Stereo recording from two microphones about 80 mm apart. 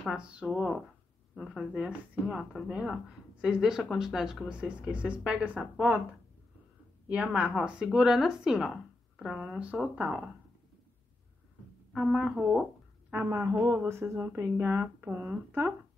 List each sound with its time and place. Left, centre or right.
0.1 s speech: centre
7.3 s speech: centre
9.8 s speech: centre
12.0 s speech: centre
13.1 s speech: right
13.4 s speech: right